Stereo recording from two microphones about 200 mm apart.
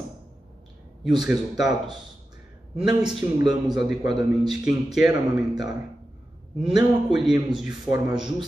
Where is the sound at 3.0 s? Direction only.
20° right (ahead or behind).